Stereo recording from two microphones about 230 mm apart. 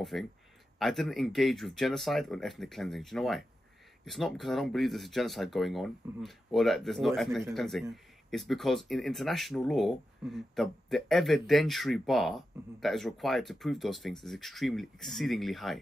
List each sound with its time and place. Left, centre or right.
0.0 s speech: centre